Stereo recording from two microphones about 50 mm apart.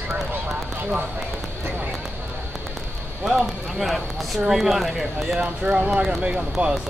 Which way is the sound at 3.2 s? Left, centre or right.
Centre.